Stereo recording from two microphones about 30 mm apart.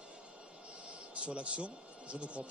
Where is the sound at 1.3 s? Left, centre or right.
Right.